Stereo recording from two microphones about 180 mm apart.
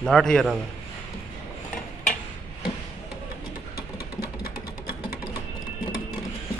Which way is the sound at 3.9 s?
55° left (ahead or behind).